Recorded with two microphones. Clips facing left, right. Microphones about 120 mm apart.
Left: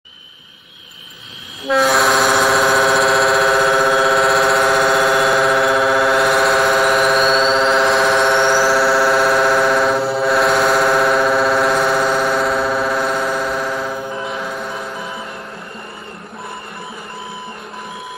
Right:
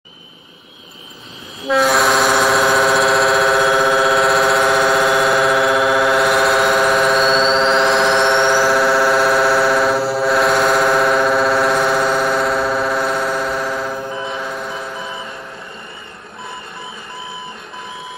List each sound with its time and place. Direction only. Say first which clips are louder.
1.7 s vehicle: even; centre (ahead or behind)